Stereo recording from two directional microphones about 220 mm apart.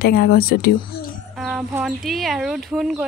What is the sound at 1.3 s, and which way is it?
Speech, 5° right (ahead or behind).